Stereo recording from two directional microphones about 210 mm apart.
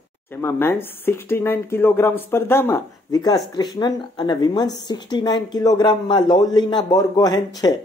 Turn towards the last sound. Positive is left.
turn(degrees=20)  # may be behind; listen again after turning